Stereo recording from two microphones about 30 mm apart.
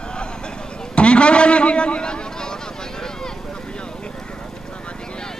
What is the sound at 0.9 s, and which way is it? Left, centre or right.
A man's voice, left.